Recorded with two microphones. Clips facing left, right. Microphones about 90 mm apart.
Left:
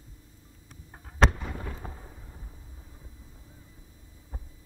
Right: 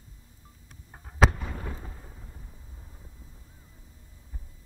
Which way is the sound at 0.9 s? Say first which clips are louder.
Right 1 dB; centre (ahead or behind).